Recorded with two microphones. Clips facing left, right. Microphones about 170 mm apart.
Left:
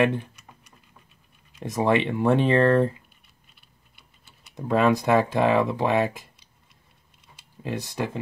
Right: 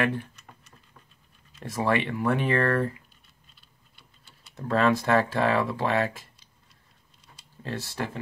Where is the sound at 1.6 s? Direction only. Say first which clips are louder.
Left 4 dB; 20° left (ahead or behind).